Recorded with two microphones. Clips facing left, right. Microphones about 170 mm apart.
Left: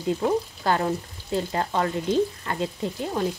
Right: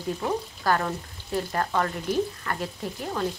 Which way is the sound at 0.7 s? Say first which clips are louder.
Left 1 dB; 20° left (ahead or behind).